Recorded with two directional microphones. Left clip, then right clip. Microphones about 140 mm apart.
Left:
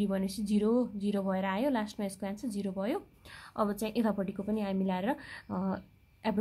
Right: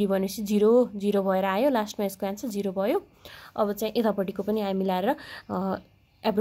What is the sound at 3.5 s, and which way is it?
A woman's voice, 15° right (ahead or behind).